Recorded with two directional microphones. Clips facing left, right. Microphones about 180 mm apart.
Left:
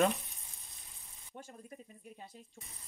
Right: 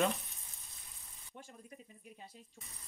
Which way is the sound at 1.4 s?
45° left (ahead or behind).